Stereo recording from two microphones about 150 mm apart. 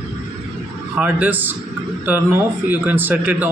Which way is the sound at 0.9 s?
10° right (ahead or behind).